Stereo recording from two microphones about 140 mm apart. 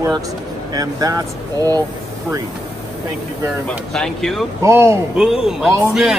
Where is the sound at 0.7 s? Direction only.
25° right (ahead or behind).